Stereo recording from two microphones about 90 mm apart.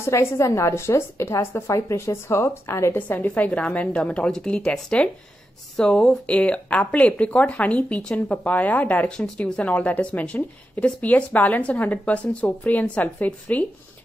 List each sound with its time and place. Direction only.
0.0 s a woman's voice: 30° left (ahead or behind)